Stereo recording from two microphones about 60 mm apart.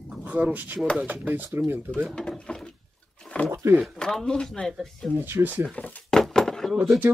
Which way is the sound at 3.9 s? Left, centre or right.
Centre.